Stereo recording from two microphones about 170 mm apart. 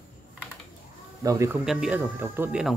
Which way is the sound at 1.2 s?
20° right (ahead or behind).